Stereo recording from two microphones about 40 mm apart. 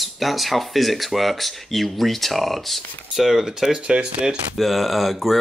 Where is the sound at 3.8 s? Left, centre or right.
Right.